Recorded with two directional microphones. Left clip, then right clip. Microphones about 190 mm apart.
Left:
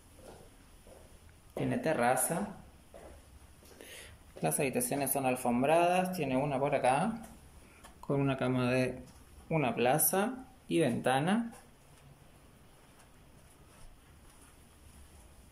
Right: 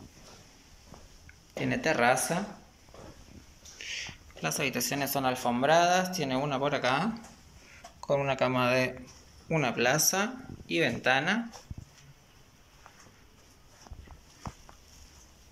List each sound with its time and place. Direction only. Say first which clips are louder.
1.5 s speech: right 4 dB; 10° left (ahead or behind)
4.4 s speech: right 2 dB; 20° left (ahead or behind)
8.1 s speech: right 5 dB; 5° left (ahead or behind)